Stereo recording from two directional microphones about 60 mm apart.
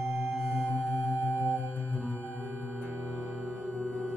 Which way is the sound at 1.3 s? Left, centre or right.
Left.